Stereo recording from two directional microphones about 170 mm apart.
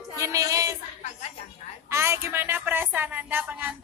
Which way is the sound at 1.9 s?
15° right (ahead or behind).